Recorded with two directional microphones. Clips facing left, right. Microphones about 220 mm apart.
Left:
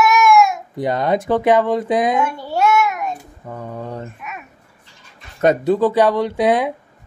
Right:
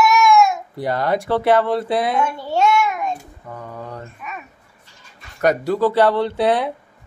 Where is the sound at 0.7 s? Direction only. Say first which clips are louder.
Left 2 dB; 20° left (ahead or behind).